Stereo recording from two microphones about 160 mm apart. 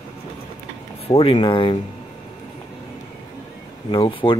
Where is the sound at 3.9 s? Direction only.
35° left (ahead or behind).